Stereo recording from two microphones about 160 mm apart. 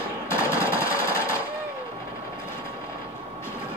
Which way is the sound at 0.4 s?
20° left (ahead or behind).